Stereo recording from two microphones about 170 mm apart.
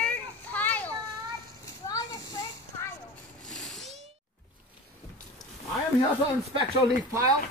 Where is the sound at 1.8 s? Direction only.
20° left (ahead or behind).